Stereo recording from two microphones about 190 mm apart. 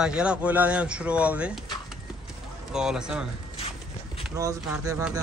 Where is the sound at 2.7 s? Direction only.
5° right (ahead or behind).